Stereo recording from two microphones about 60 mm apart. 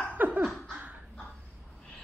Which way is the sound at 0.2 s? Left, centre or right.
Right.